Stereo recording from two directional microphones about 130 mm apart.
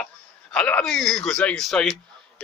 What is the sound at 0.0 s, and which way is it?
A man's voice, 10° left (ahead or behind).